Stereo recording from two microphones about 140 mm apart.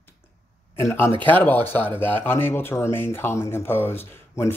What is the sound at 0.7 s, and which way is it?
Speech, 20° left (ahead or behind).